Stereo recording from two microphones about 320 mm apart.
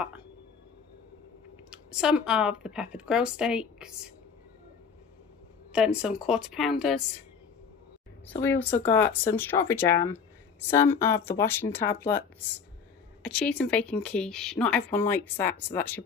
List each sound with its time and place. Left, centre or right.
1.7 s speech: centre
5.7 s speech: centre
8.3 s speech: centre
13.2 s speech: centre